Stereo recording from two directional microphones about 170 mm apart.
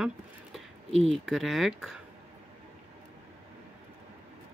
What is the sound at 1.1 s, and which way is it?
Speech, centre (ahead or behind).